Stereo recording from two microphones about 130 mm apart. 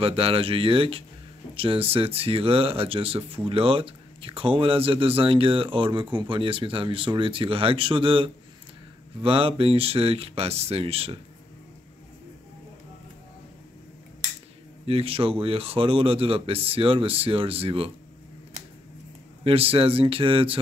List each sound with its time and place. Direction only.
0.0 s speech: 45° right (ahead or behind)
14.9 s speech: 45° right (ahead or behind)
19.4 s speech: 45° right (ahead or behind)